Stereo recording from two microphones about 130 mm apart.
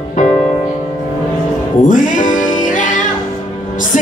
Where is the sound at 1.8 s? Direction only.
90° left.